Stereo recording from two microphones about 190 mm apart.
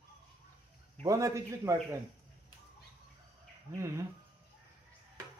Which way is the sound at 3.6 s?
15° right (ahead or behind).